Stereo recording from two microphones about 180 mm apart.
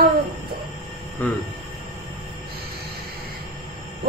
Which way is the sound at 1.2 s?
10° left (ahead or behind).